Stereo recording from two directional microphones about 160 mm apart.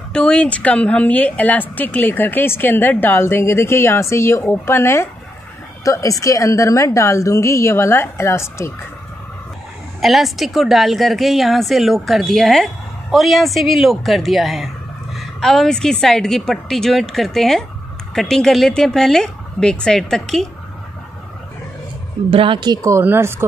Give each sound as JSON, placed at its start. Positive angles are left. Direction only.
{"t": 0.1, "sound": "a woman's voice", "side_deg": 5}
{"t": 9.9, "sound": "a woman's voice", "side_deg": 0}
{"t": 22.3, "sound": "speech", "side_deg": -35}